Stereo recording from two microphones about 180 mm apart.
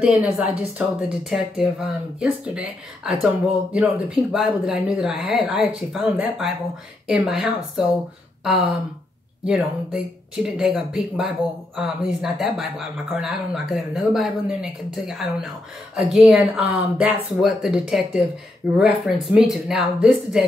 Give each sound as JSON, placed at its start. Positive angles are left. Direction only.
{"t": 0.0, "sound": "a woman's voice", "side_deg": -5}
{"t": 9.4, "sound": "speech", "side_deg": 0}